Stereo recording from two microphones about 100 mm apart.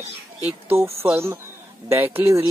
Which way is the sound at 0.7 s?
25° right (ahead or behind).